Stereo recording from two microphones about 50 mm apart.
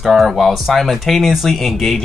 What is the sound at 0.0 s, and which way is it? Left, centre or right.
Speech, centre.